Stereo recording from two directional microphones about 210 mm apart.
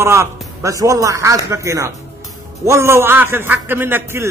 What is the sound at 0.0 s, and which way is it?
A man's voice, 15° right (ahead or behind).